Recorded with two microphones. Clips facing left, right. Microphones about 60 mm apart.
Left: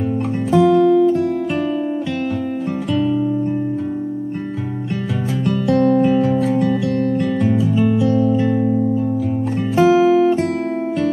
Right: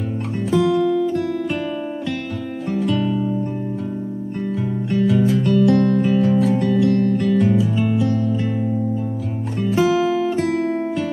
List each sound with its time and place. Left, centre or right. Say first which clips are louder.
0.5 s music: left 5 dB; centre
4.9 s music: right 7 dB; centre
9.8 s music: left 6 dB; centre